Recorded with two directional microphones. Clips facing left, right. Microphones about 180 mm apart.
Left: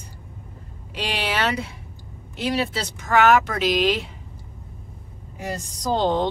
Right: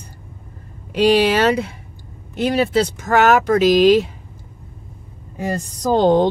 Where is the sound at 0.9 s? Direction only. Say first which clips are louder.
Right 13 dB; 40° right (ahead or behind).